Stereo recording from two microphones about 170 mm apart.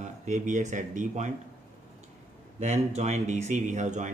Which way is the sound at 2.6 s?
40° right (ahead or behind).